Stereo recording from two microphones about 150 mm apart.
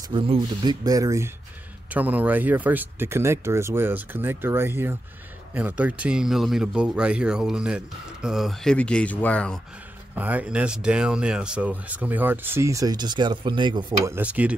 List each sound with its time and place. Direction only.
0.1 s speech: 30° right (ahead or behind)
1.9 s speech: 10° right (ahead or behind); by 9.6 s 5° left (ahead or behind)
10.1 s speech: 10° right (ahead or behind); by 13.9 s 30° right (ahead or behind)
14.0 s speech: 10° right (ahead or behind)